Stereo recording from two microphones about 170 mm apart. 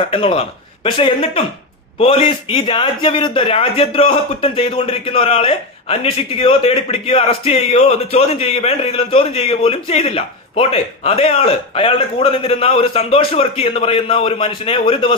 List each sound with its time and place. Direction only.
0.1 s a man's voice: 35° left (ahead or behind)